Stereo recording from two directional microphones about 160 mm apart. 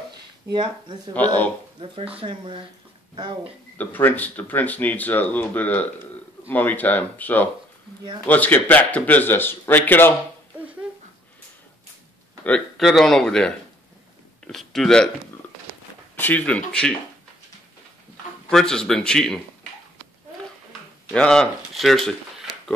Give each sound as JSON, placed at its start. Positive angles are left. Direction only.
{"t": 0.5, "sound": "speech", "side_deg": -30}
{"t": 2.1, "sound": "speech", "side_deg": -35}
{"t": 3.7, "sound": "speech", "side_deg": 10}
{"t": 12.4, "sound": "speech", "side_deg": 5}
{"t": 16.2, "sound": "speech", "side_deg": 10}
{"t": 18.5, "sound": "speech", "side_deg": 5}
{"t": 21.1, "sound": "speech", "side_deg": 5}